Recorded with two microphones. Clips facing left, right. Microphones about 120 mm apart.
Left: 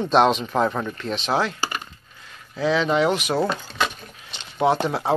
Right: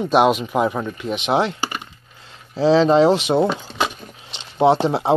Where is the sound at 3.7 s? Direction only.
20° right (ahead or behind).